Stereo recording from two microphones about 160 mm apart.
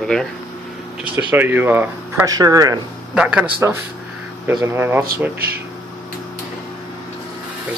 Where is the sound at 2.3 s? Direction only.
25° right (ahead or behind).